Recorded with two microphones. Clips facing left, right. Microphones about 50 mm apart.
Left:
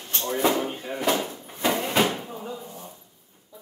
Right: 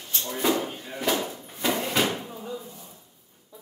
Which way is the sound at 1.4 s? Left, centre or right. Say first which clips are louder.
Left 2 dB; centre.